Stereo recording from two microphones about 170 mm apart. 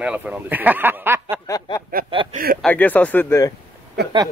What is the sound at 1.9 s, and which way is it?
Snicker, 60° right (ahead or behind).